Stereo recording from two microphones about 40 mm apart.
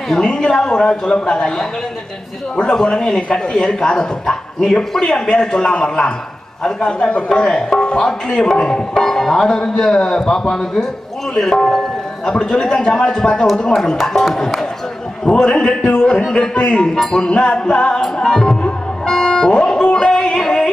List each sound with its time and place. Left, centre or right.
0.2 s a woman's voice: left
7.2 s speech: centre
17.3 s a woman's voice: left
18.0 s speech: centre
18.6 s music: centre
20.4 s yodeling: centre